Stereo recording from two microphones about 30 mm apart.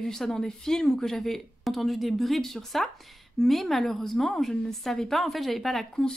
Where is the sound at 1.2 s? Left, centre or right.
Centre.